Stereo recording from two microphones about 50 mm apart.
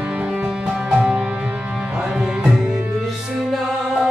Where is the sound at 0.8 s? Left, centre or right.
Centre.